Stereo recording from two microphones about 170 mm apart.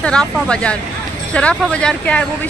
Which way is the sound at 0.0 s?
5° left (ahead or behind).